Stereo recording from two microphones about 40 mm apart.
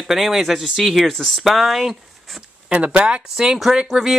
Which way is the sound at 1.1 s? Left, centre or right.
Centre.